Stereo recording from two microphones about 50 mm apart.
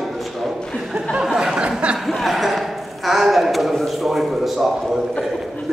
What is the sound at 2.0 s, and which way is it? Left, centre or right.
A man's voice, centre.